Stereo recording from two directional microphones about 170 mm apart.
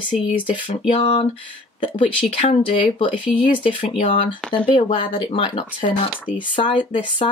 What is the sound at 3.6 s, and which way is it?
Speech, 30° left (ahead or behind).